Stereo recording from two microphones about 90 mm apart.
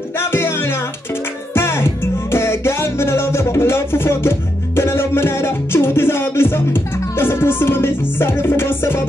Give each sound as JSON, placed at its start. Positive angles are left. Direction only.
{"t": 0.2, "sound": "music", "side_deg": 25}